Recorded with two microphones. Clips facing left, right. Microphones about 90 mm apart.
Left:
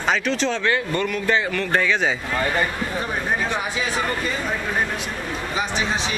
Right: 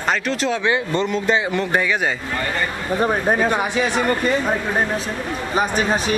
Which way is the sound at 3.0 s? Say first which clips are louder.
Right 8 dB; 45° right (ahead or behind).